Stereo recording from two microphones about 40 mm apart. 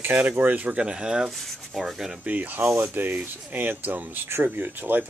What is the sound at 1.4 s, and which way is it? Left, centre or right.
Speech, centre.